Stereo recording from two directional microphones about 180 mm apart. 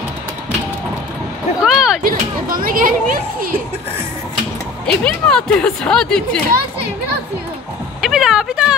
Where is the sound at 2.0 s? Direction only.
50° right (ahead or behind).